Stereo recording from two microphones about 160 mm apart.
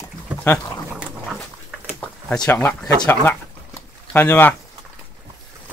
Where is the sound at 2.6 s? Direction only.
10° left (ahead or behind).